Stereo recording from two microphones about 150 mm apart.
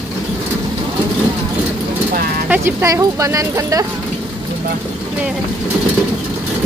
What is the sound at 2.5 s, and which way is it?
Speech, 20° right (ahead or behind).